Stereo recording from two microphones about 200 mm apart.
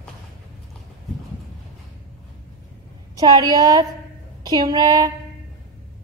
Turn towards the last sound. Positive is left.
turn(degrees=-15)  # may be behind; listen again after turning